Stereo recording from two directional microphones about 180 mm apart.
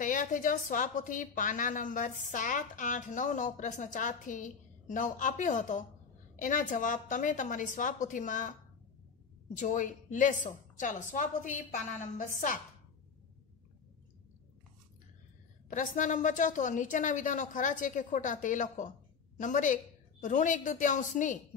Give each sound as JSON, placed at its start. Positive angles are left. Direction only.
{"t": 0.0, "sound": "a woman's voice", "side_deg": 45}
{"t": 9.6, "sound": "a woman's voice", "side_deg": 45}
{"t": 15.7, "sound": "a woman's voice", "side_deg": 45}